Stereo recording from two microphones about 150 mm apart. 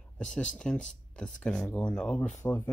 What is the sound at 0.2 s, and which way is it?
Speech, 5° left (ahead or behind).